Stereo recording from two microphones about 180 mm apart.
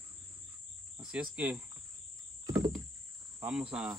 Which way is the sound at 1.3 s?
5° right (ahead or behind).